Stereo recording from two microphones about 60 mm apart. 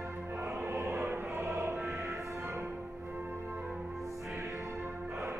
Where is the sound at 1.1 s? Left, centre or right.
Right.